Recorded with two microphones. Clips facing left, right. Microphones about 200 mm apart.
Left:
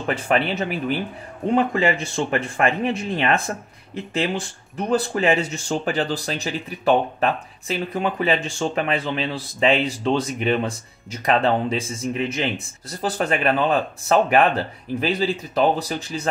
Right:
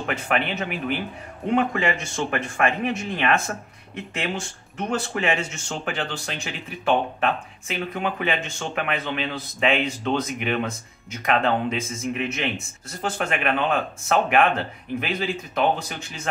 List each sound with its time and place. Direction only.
0.0 s speech: 35° left (ahead or behind)